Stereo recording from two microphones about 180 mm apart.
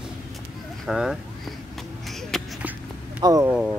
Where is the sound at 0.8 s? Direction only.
Centre (ahead or behind).